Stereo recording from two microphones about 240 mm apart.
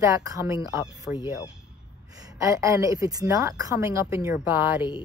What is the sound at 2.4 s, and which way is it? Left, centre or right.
A woman's voice, centre.